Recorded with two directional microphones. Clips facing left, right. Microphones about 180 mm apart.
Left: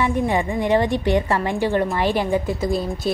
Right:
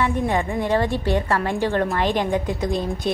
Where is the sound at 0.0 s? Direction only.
15° left (ahead or behind).